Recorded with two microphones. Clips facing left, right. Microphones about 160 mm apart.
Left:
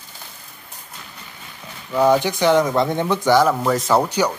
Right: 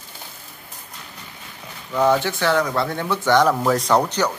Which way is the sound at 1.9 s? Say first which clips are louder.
Left 2 dB; 10° left (ahead or behind).